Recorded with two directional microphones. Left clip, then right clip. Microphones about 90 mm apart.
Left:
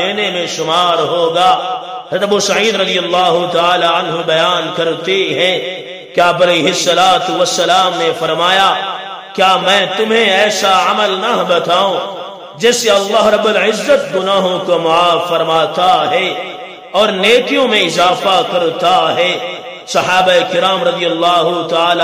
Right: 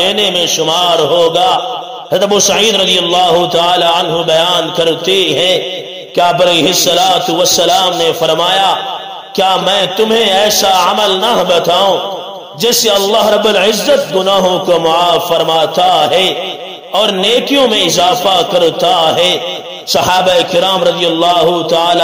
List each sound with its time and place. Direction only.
0.0 s a man's voice: 35° right (ahead or behind)